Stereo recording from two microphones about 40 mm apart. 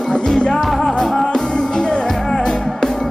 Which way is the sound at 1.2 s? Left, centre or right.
Centre.